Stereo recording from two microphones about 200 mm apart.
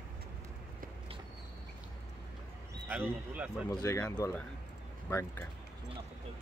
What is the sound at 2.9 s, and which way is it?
Speech, 10° right (ahead or behind).